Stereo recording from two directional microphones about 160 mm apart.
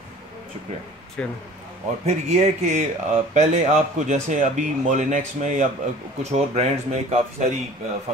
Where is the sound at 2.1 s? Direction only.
45° right (ahead or behind).